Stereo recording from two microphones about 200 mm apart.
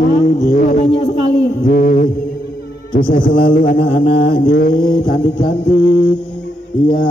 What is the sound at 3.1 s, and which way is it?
Speech, 45° left (ahead or behind).